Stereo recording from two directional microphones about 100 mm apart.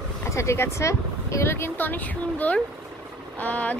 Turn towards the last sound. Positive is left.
turn(degrees=15)  # may be behind; listen again after turning